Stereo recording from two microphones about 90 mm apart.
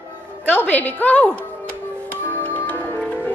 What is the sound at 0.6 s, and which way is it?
Speech, 20° left (ahead or behind).